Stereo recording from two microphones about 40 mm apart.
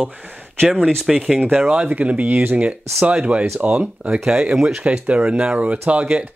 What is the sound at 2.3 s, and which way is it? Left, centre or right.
Speech, right.